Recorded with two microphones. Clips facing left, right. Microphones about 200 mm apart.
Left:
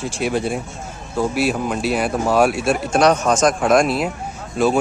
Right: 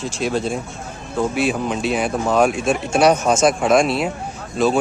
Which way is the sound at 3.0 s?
5° right (ahead or behind).